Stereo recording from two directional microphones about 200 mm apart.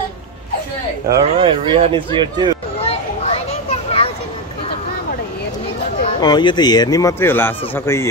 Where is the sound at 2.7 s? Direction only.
30° left (ahead or behind).